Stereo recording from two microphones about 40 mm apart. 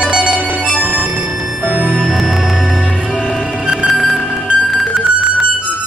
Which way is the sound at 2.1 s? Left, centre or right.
Centre.